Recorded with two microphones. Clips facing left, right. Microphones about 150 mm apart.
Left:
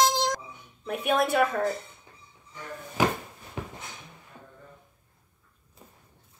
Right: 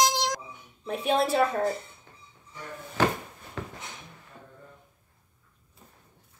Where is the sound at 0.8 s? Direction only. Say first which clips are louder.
Even; 30° right (ahead or behind).